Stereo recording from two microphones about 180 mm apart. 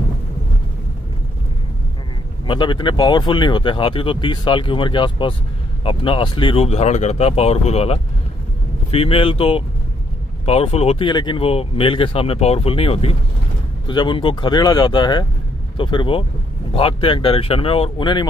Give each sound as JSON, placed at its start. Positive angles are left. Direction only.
{"t": 2.4, "sound": "speech", "side_deg": 25}